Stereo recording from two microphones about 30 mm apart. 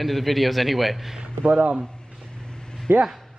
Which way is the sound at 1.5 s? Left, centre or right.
Right.